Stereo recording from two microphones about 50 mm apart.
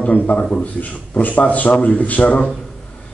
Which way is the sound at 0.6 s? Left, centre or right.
Left.